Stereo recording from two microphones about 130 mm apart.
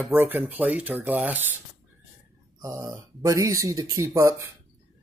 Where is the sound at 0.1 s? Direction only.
15° right (ahead or behind).